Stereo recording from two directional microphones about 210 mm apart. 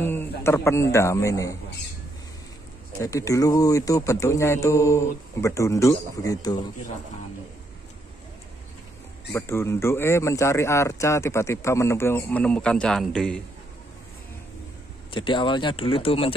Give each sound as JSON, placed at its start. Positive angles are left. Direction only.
{"t": 0.0, "sound": "a man's voice", "side_deg": 10}
{"t": 3.0, "sound": "speech", "side_deg": 15}
{"t": 9.3, "sound": "speech", "side_deg": 10}
{"t": 15.0, "sound": "speech", "side_deg": 25}